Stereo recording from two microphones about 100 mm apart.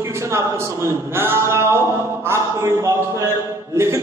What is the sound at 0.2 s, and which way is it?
A man's voice, 30° right (ahead or behind).